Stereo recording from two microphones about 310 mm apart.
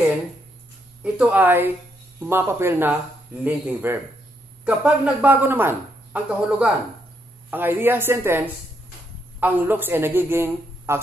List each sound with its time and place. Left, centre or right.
1.0 s a woman's voice: centre